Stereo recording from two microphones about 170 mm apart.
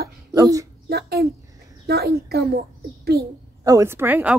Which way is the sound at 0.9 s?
65° right (ahead or behind).